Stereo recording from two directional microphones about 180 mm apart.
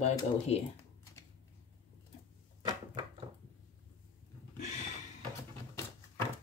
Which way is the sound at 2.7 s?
25° right (ahead or behind).